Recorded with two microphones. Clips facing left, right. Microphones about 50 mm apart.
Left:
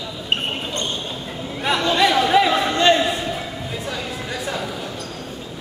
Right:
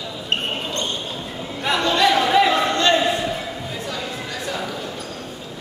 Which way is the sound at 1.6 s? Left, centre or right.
Centre.